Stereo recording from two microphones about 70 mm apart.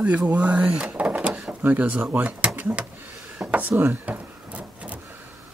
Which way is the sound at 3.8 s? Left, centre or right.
Right.